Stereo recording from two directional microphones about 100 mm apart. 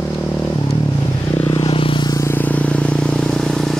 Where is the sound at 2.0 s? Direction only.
35° left (ahead or behind).